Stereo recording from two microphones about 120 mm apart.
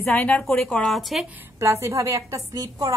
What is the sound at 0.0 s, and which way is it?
A woman's voice, 15° left (ahead or behind).